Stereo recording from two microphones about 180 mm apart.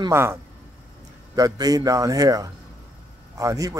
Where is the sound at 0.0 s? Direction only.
15° right (ahead or behind).